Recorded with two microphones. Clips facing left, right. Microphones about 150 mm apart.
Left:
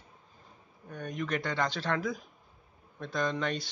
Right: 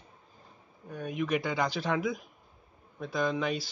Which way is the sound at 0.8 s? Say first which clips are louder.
Right 3 dB; 5° right (ahead or behind).